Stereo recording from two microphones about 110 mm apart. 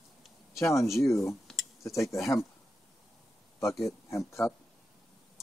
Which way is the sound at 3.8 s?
25° left (ahead or behind).